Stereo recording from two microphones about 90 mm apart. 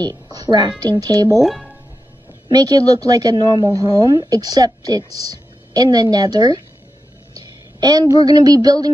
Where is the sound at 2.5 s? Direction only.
45° right (ahead or behind).